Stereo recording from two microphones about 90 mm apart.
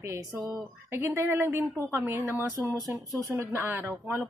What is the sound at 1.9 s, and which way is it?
Speech, 35° right (ahead or behind).